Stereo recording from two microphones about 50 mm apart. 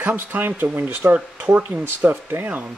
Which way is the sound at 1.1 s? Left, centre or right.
Right.